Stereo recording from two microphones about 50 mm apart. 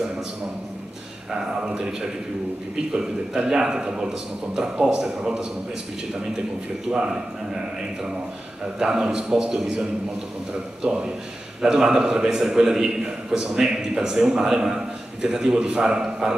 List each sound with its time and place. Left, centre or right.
1.4 s a man's voice: centre
6.9 s a man's voice: centre
8.7 s a man's voice: centre